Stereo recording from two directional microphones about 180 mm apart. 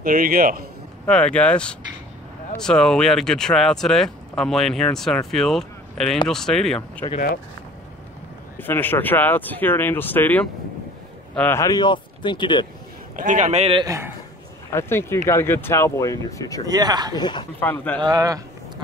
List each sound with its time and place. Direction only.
0.0 s a man's voice: 50° right (ahead or behind)
1.0 s speech: 5° left (ahead or behind)
8.5 s speech: 10° left (ahead or behind)
13.1 s speech: 45° right (ahead or behind)
13.8 s a man's voice: 15° right (ahead or behind)
14.7 s speech: 15° left (ahead or behind)
16.6 s speech: 20° right (ahead or behind)
17.1 s speech: 25° left (ahead or behind)
17.6 s speech: 10° left (ahead or behind)
18.0 s speech: 20° right (ahead or behind)